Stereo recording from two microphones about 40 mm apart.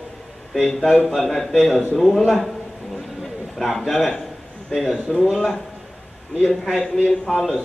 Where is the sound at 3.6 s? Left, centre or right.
Centre.